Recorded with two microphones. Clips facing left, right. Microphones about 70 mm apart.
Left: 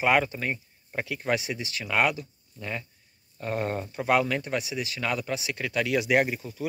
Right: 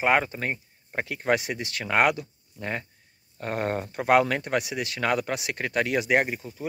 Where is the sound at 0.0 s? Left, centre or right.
Right.